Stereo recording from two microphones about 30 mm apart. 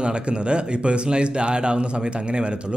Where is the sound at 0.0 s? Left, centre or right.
Right.